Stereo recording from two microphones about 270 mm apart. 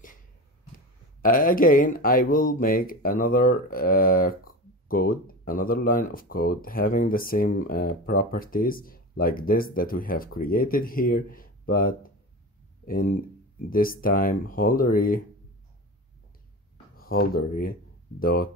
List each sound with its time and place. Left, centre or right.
1.2 s speech: left
16.9 s speech: left